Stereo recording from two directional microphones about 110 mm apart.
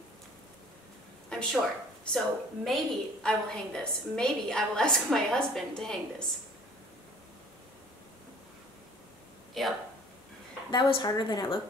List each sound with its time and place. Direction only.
1.3 s a woman's voice: 5° left (ahead or behind)
9.5 s speech: centre (ahead or behind)
10.7 s a woman's voice: 45° left (ahead or behind)